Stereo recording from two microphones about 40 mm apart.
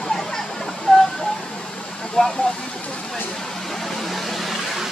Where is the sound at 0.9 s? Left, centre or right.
Left.